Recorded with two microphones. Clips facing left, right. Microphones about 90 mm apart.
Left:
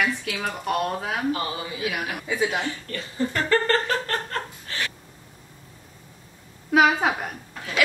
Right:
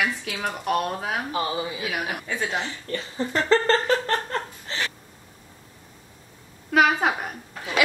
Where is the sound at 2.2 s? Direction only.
10° left (ahead or behind).